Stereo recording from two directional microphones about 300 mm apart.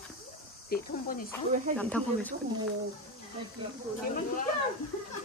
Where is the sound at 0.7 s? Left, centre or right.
Left.